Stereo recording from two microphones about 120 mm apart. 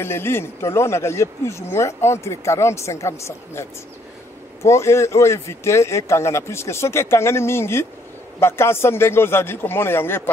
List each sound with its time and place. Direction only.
0.0 s speech: 20° left (ahead or behind)
4.6 s speech: 25° left (ahead or behind)